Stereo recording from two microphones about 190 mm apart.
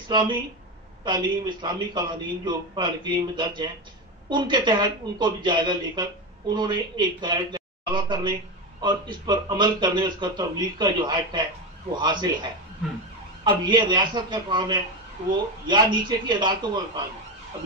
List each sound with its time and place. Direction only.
0.1 s speech: 25° right (ahead or behind)